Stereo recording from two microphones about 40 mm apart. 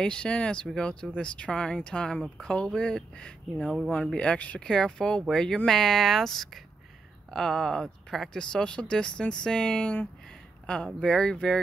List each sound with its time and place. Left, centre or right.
0.0 s speech: left
3.5 s speech: centre
3.9 s speech: left
4.6 s speech: centre
11.0 s speech: centre